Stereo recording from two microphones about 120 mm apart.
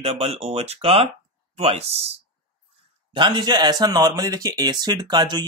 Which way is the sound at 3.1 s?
40° right (ahead or behind).